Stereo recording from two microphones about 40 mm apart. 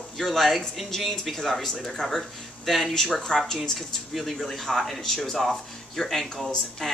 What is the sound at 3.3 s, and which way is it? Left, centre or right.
Speech, centre.